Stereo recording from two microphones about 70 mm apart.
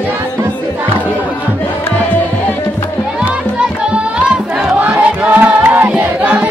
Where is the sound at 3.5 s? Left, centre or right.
Centre.